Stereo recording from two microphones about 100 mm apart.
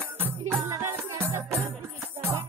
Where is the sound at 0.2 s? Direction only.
25° right (ahead or behind).